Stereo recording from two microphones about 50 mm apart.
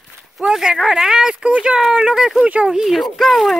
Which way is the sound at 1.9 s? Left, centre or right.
Centre.